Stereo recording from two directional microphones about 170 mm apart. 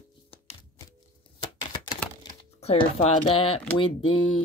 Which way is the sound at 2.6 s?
40° left (ahead or behind).